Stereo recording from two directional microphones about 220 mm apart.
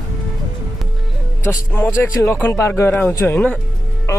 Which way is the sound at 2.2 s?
10° left (ahead or behind).